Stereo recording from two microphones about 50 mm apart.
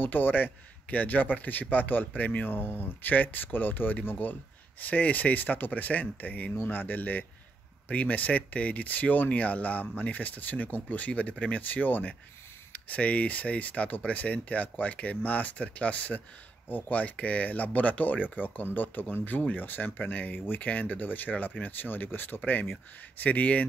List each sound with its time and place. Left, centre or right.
0.0 s speech: left